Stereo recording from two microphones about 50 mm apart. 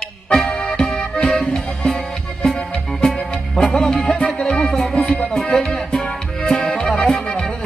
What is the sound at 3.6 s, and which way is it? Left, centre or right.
Music, centre.